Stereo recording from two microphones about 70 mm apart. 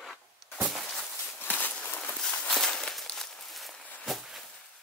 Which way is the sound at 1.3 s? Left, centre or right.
Left.